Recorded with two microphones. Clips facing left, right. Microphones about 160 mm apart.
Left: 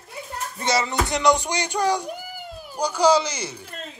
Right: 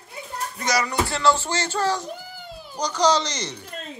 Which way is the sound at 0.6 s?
25° left (ahead or behind).